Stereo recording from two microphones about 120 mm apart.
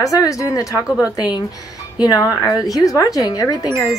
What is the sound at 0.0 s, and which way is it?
Speech, 25° left (ahead or behind).